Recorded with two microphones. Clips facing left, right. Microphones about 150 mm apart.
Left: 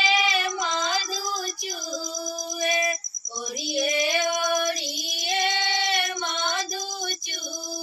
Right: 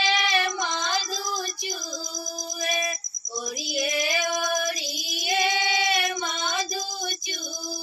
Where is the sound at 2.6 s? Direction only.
Centre (ahead or behind).